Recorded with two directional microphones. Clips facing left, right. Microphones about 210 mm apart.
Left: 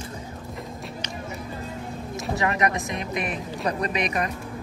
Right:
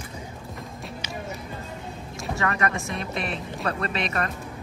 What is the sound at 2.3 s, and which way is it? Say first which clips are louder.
Speech: left 2 dB; 20° left (ahead or behind).